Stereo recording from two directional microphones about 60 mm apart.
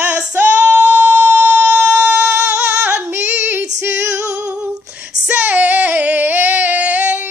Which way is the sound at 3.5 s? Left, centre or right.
Right.